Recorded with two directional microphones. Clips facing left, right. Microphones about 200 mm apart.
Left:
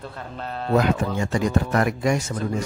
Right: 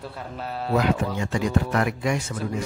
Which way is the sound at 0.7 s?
45° left (ahead or behind).